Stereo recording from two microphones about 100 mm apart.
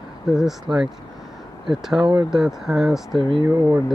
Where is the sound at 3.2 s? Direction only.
55° right (ahead or behind).